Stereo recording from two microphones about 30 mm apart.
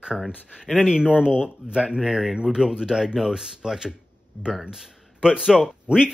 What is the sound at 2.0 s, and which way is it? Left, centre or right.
Speech, centre.